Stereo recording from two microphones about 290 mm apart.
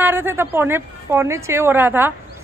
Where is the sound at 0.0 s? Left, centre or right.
Centre.